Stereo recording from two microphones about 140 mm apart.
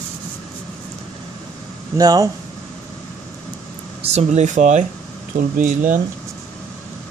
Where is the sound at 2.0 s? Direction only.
25° right (ahead or behind).